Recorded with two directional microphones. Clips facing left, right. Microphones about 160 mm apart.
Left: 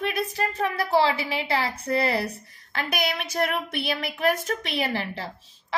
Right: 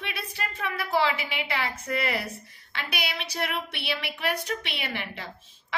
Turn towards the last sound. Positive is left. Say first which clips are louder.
# left 6 dB
turn(degrees=35)  # may be behind; listen again after turning